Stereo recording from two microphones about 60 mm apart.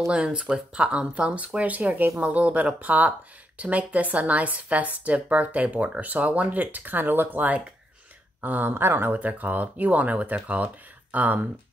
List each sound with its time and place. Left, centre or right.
0.1 s speech: centre; by 9.2 s right
9.2 s speech: right